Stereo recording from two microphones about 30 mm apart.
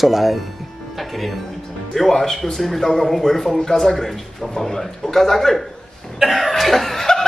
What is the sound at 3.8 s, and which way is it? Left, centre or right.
A man's voice, centre.